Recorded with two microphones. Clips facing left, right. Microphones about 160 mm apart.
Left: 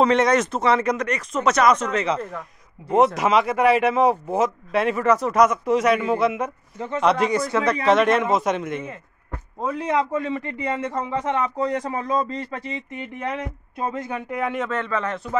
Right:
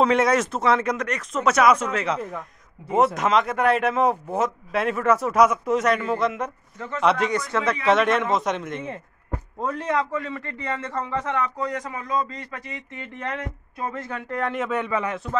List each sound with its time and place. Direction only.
0.0 s a man's voice: 5° right (ahead or behind)
9.8 s speech: 20° left (ahead or behind)
13.7 s speech: 20° left (ahead or behind); by 14.7 s 5° left (ahead or behind)
14.7 s speech: 15° right (ahead or behind)